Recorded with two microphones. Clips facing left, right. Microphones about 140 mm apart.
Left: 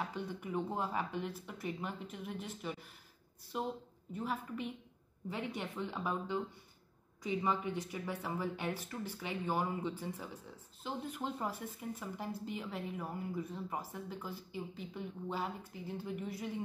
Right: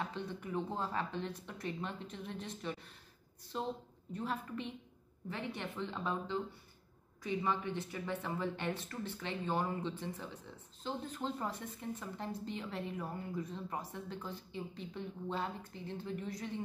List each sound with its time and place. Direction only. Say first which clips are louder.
0.0 s speech: even; 10° left (ahead or behind)